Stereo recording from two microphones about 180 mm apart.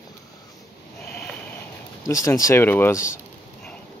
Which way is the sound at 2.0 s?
20° left (ahead or behind).